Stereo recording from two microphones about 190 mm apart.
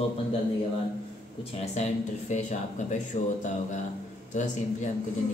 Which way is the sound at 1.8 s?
40° left (ahead or behind).